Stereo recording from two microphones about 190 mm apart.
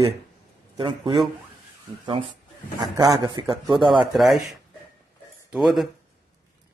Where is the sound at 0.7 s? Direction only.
25° right (ahead or behind).